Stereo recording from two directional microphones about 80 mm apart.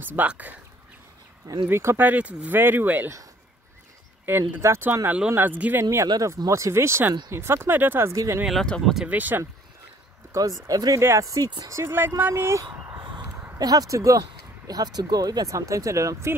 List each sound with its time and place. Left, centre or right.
0.0 s speech: right
1.7 s speech: right
4.3 s speech: right
6.2 s speech: right
8.1 s speech: right
8.6 s speech: centre
9.0 s speech: right
10.7 s speech: right
11.0 s speech: right
13.6 s speech: right
14.7 s speech: right